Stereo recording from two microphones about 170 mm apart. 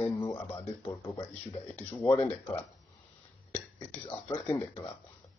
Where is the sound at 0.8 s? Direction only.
20° left (ahead or behind).